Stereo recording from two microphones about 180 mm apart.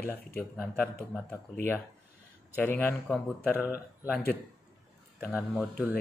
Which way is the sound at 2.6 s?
10° left (ahead or behind).